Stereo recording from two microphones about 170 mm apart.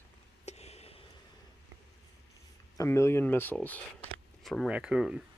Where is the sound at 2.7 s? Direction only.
15° left (ahead or behind).